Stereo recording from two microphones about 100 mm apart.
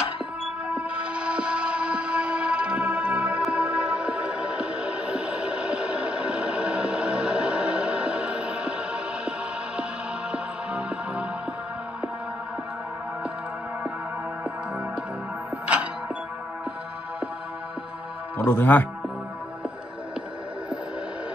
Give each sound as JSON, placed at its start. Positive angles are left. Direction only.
{"t": 0.7, "sound": "music", "side_deg": -10}
{"t": 10.3, "sound": "music", "side_deg": -10}
{"t": 15.6, "sound": "music", "side_deg": -15}
{"t": 18.5, "sound": "a man's voice", "side_deg": 20}